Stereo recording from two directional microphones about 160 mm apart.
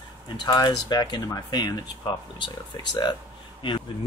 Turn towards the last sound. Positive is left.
turn(degrees=30)  # may be behind; listen again after turning